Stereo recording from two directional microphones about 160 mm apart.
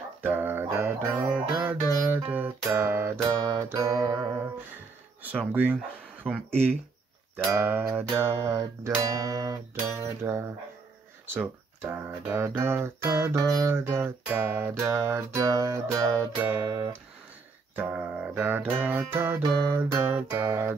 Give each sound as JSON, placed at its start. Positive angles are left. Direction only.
{"t": 0.2, "sound": "a sound", "side_deg": -15}
{"t": 1.3, "sound": "music", "side_deg": -5}
{"t": 5.5, "sound": "speech", "side_deg": -10}
{"t": 6.5, "sound": "speech", "side_deg": 5}
{"t": 7.4, "sound": "speech", "side_deg": -15}
{"t": 17.7, "sound": "music", "side_deg": -10}
{"t": 18.3, "sound": "speech", "side_deg": -10}